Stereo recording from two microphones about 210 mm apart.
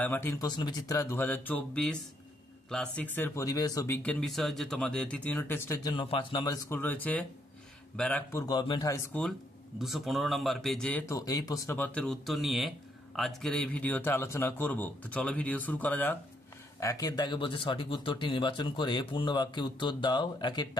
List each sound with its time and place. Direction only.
0.0 s speech: 10° left (ahead or behind)
9.8 s speech: centre (ahead or behind); by 20.6 s 20° left (ahead or behind)